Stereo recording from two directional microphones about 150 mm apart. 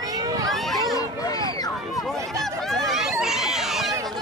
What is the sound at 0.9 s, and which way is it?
Speech, 25° left (ahead or behind).